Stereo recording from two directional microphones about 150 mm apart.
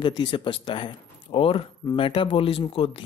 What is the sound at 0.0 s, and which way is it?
Speech, 30° left (ahead or behind).